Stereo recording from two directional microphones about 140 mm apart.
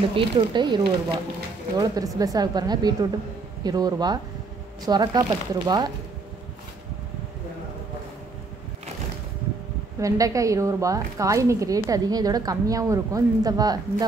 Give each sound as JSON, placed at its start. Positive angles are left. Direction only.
{"t": 0.1, "sound": "a woman's voice", "side_deg": -35}
{"t": 9.9, "sound": "a woman's voice", "side_deg": -25}